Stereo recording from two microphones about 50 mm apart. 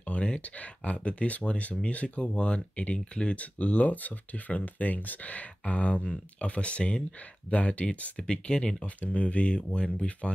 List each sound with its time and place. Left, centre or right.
0.0 s speech: left